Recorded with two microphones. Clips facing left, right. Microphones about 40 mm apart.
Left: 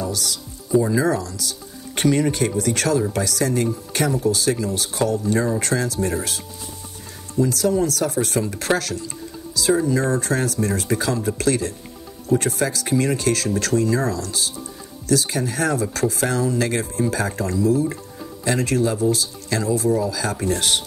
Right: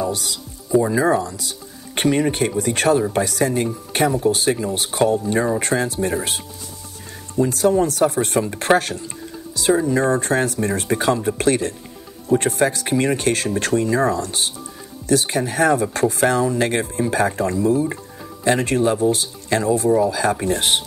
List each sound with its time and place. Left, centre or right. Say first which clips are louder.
0.0 s music: right 3 dB; right
0.7 s speech: right 2 dB; right
7.3 s speech: right 3 dB; right